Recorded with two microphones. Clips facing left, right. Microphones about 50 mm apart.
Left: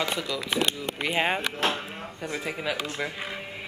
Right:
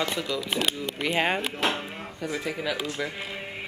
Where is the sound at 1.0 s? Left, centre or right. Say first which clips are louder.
Right 1 dB; centre.